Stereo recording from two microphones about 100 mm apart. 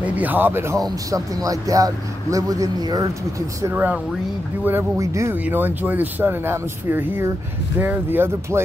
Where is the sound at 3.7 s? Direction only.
15° right (ahead or behind).